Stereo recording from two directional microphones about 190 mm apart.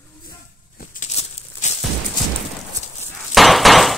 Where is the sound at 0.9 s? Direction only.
40° left (ahead or behind).